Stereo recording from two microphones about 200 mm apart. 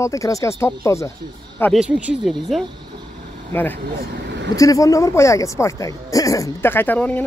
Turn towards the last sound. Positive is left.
turn(degrees=10)  # may be behind; listen again after turning